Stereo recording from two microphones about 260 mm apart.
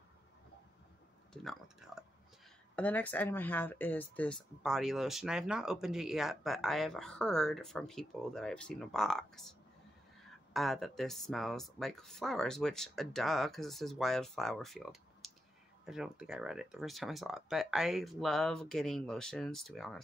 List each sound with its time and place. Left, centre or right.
1.3 s speech: centre